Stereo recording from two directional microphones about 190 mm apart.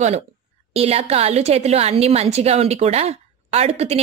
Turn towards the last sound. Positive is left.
turn(degrees=-35)  # may be behind; listen again after turning